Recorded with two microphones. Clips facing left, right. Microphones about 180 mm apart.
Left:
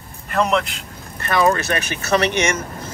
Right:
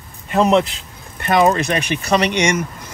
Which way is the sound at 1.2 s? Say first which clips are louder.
Right 3 dB; 15° right (ahead or behind).